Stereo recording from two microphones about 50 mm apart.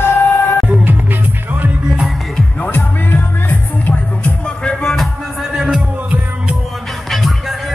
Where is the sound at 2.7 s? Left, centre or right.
Left.